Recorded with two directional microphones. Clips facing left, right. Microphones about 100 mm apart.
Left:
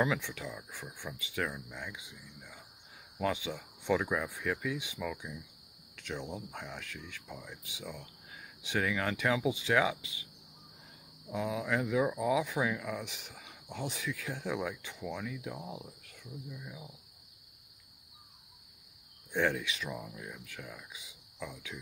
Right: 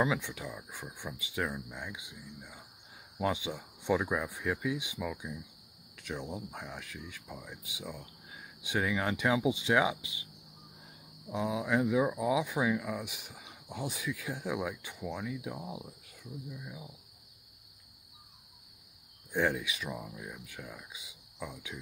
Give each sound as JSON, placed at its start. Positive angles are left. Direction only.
{"t": 0.0, "sound": "speech", "side_deg": -15}
{"t": 11.2, "sound": "speech", "side_deg": -15}
{"t": 19.3, "sound": "speech", "side_deg": -10}